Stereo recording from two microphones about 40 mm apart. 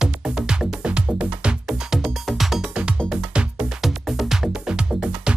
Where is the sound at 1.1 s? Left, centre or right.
Right.